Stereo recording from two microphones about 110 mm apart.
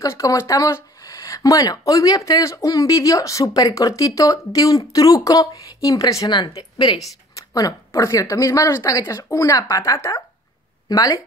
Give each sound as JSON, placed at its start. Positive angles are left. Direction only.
{"t": 0.0, "sound": "speech", "side_deg": 30}
{"t": 6.3, "sound": "speech", "side_deg": 45}
{"t": 7.3, "sound": "speech", "side_deg": 30}